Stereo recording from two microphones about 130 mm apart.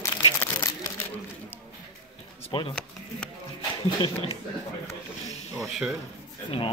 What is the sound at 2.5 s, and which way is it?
Speech, 40° left (ahead or behind).